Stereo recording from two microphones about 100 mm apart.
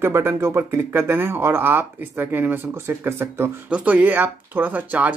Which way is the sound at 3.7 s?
15° right (ahead or behind).